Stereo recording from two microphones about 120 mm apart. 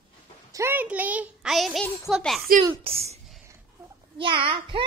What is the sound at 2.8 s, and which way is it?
Speech, 50° right (ahead or behind).